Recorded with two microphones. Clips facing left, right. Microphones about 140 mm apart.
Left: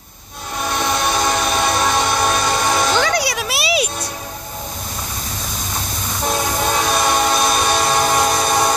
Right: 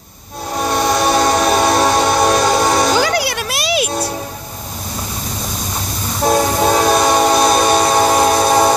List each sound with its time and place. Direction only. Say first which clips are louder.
0.6 s train: right 5 dB; 45° right (ahead or behind)
3.0 s music: right 2 dB; 5° right (ahead or behind)
6.2 s train: right 7 dB; 45° right (ahead or behind)